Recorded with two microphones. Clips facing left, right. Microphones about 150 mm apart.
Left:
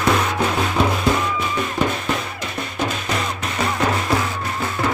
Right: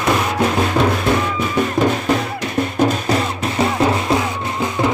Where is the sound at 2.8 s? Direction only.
40° right (ahead or behind).